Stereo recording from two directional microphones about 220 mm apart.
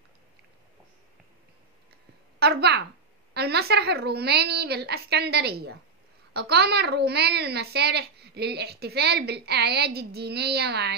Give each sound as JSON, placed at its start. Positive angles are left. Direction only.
{"t": 2.4, "sound": "a child's voice", "side_deg": -50}